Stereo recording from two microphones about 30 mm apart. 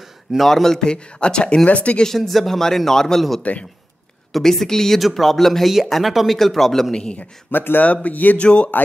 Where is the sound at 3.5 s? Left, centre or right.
Left.